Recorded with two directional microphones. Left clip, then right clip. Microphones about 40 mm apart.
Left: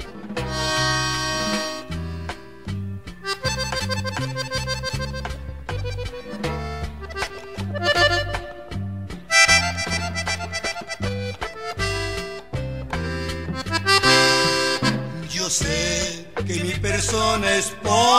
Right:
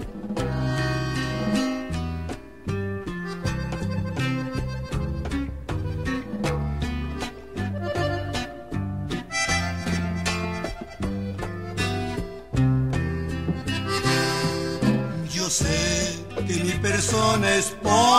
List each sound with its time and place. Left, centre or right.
0.5 s music: right
3.3 s music: right
7.7 s accordion: right
9.3 s harmonica: right
13.7 s music: right